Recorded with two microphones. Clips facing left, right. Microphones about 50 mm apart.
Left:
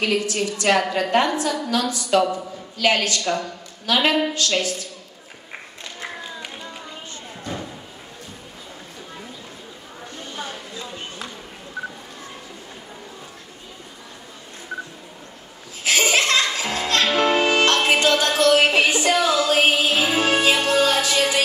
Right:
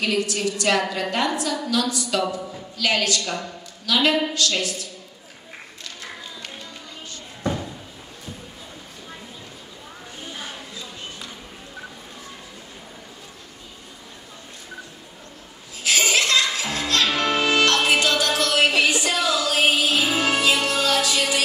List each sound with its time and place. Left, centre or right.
0.0 s a woman's voice: left
15.8 s music: left